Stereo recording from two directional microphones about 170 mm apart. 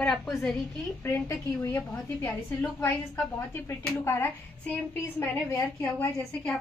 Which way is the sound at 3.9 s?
15° left (ahead or behind).